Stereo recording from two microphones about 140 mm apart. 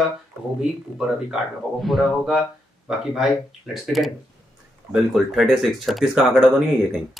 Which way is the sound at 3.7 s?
Centre (ahead or behind).